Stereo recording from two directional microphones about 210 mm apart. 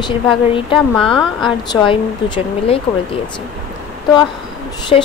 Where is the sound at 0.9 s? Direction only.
5° left (ahead or behind).